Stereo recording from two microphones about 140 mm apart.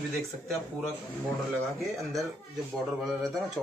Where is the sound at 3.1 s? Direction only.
Centre (ahead or behind).